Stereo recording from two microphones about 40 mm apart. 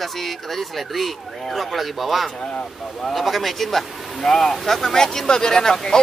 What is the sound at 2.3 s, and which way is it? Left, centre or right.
Speech, centre.